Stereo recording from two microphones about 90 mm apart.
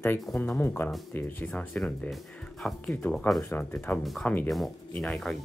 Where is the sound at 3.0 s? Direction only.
15° left (ahead or behind).